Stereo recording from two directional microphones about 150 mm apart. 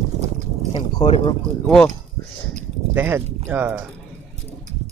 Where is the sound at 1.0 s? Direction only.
40° left (ahead or behind).